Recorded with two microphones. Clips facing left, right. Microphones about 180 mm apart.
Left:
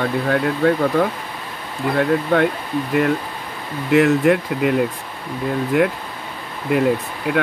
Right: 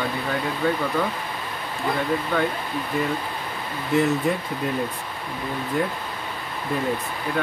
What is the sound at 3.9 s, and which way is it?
Speech, 85° left.